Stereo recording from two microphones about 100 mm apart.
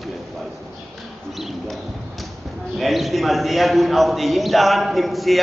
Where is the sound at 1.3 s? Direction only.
Centre (ahead or behind).